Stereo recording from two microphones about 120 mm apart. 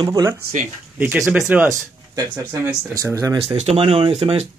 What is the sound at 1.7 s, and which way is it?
Speech, 25° right (ahead or behind).